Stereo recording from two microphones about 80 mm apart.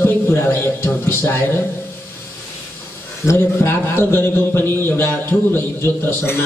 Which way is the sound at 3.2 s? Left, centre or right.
Left.